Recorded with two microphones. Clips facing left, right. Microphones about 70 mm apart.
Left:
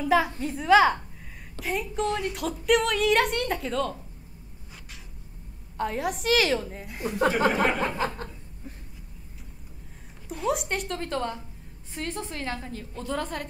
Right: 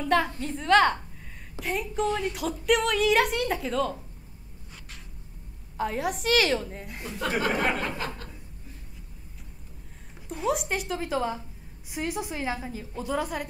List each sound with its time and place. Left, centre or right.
0.0 s a woman's voice: centre
5.8 s a woman's voice: centre
7.2 s speech: left
7.6 s a woman's voice: centre
10.2 s a woman's voice: centre